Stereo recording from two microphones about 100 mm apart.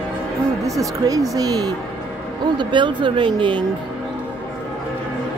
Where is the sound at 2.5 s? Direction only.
50° right (ahead or behind).